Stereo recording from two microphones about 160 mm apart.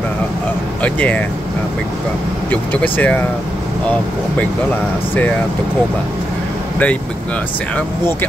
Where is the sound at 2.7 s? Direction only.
10° left (ahead or behind).